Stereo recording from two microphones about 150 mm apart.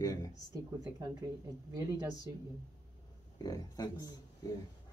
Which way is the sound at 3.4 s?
25° left (ahead or behind).